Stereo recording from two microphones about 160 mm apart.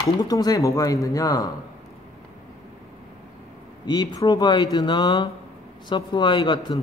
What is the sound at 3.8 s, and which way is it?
Speech, 25° left (ahead or behind).